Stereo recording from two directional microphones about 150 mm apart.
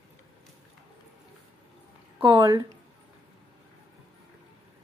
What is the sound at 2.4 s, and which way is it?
Speech, 20° right (ahead or behind).